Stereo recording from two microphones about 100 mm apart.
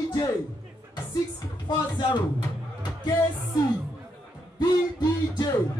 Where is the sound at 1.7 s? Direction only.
45° left (ahead or behind).